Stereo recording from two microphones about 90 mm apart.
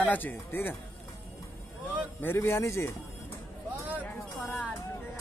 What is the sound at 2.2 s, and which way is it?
Speech, 25° left (ahead or behind).